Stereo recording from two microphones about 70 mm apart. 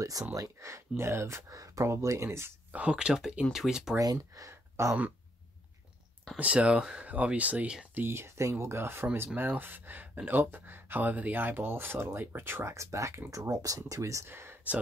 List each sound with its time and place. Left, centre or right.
0.2 s speech: right
2.7 s speech: centre
4.0 s speech: right
4.5 s a sound: right
6.3 s speech: centre
7.9 s speech: right
14.3 s a sound: right